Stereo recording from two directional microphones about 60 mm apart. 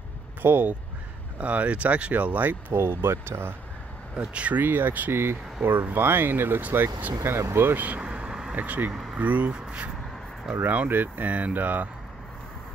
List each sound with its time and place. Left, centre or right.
0.4 s speech: right
1.4 s speech: right
2.7 s speech: right
4.2 s speech: right
4.6 s speech: right
5.1 s speech: right
7.8 s vehicle: right
8.5 s speech: right
10.5 s speech: right